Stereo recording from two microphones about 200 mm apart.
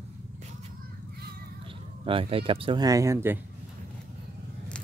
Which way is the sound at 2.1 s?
25° right (ahead or behind).